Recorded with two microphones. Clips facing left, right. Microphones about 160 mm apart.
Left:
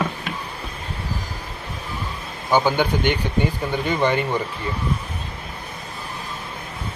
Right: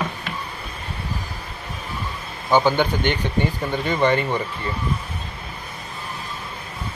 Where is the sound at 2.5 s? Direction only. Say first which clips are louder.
Right 1 dB; 10° left (ahead or behind).